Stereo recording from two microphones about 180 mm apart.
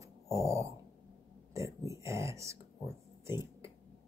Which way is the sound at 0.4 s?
15° right (ahead or behind).